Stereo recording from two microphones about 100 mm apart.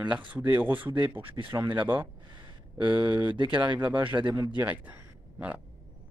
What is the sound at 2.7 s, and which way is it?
Speech, 50° right (ahead or behind).